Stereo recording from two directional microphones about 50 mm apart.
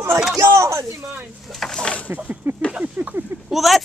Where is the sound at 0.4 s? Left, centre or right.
Right.